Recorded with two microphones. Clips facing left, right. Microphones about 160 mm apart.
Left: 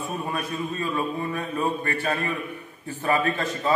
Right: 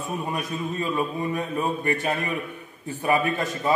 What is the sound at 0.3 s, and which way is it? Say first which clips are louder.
A man's voice: even; 20° right (ahead or behind).